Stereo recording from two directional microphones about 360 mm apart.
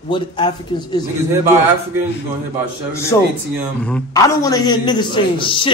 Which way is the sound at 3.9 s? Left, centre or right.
Centre.